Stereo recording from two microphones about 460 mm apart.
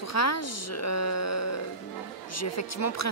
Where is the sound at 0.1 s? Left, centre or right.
Left.